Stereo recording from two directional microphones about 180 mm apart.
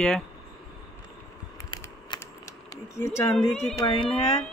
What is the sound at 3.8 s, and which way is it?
Speech, 30° left (ahead or behind).